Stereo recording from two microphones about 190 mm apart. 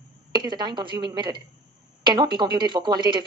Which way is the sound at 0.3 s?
20° right (ahead or behind).